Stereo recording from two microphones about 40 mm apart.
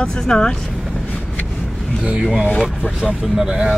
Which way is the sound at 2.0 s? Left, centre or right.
Centre.